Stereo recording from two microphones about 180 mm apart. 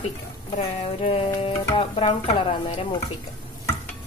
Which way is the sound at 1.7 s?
25° left (ahead or behind).